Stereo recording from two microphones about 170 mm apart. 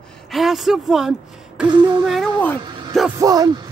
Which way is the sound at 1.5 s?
Centre (ahead or behind).